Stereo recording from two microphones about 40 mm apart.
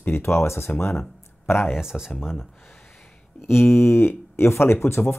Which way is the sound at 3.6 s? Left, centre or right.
Left.